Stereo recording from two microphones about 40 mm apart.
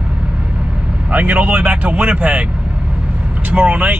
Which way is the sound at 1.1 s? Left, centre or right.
Right.